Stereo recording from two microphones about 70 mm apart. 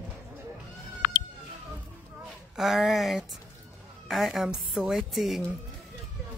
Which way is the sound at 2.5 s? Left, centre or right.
Centre.